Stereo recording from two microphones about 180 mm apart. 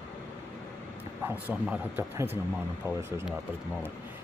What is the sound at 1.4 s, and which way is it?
A man's voice, 10° right (ahead or behind).